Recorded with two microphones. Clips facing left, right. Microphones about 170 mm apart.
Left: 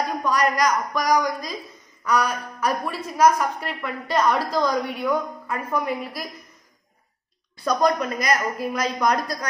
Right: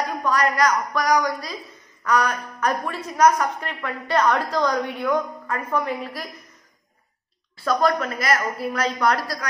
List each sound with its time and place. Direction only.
0.2 s a woman's voice: 15° left (ahead or behind)
7.5 s a woman's voice: 20° left (ahead or behind)